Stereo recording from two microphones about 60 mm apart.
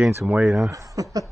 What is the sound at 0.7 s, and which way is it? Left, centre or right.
Speech, right.